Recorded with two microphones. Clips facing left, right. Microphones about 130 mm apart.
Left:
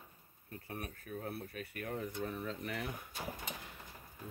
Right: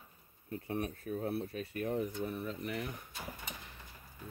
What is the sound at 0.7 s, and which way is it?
Speech, 30° right (ahead or behind).